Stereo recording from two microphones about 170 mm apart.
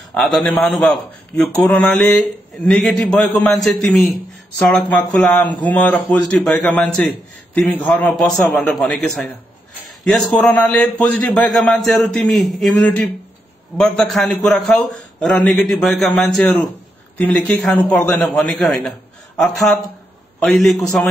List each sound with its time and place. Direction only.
0.1 s a man's voice: centre (ahead or behind)
13.7 s a man's voice: 5° left (ahead or behind)
17.5 s a man's voice: 10° left (ahead or behind)